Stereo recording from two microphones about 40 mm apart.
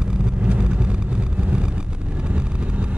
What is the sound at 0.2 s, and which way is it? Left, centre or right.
Vehicle, right.